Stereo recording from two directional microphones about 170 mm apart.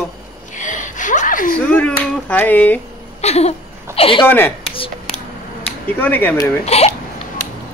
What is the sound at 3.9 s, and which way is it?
Speech, 30° left (ahead or behind).